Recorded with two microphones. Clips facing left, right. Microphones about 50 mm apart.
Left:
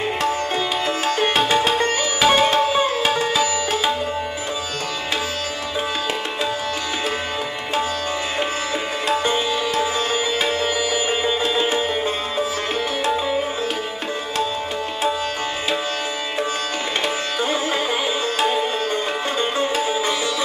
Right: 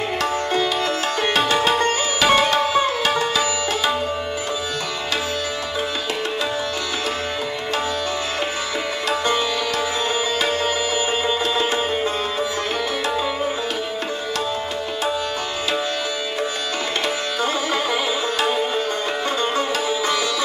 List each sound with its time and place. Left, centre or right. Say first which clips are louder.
0.8 s sitar: left 1 dB; left
9.2 s music: even; left
11.1 s music: even; left
19.5 s music: left 1 dB; left